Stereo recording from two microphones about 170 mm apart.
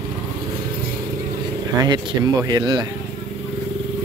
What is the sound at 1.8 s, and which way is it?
Speech, 20° right (ahead or behind).